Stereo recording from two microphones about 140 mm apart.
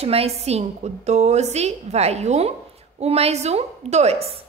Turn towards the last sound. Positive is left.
turn(degrees=-45)  # may be behind; listen again after turning